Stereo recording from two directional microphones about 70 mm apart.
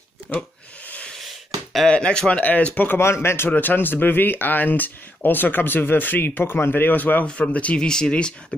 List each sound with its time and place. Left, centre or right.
0.3 s speech: centre
0.8 s wheeze: left
1.9 s speech: centre
3.0 s speech: left; by 8.4 s centre